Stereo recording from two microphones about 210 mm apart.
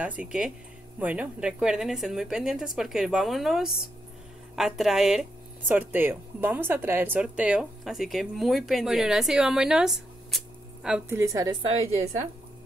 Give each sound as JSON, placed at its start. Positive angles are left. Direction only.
{"t": 0.0, "sound": "speech", "side_deg": -5}